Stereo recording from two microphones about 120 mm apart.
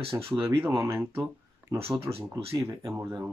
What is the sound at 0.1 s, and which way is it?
Speech, 25° right (ahead or behind).